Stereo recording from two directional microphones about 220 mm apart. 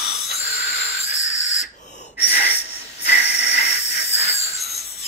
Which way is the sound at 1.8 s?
35° left (ahead or behind).